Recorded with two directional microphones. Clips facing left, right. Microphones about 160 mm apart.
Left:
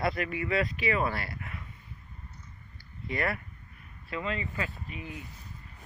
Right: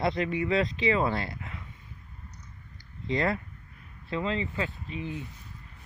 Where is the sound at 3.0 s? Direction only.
20° right (ahead or behind).